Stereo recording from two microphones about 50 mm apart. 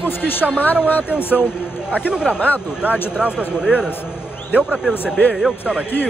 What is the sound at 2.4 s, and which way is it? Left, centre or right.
Speech, left.